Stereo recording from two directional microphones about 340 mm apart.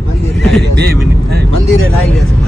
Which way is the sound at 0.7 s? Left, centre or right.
Right.